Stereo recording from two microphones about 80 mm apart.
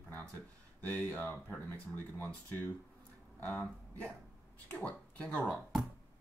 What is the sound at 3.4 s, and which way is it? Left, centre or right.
Speech, centre.